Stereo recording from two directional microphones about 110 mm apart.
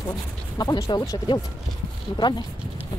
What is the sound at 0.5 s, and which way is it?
Speech, 35° left (ahead or behind).